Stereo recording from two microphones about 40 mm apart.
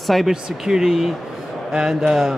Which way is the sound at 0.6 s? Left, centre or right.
Centre.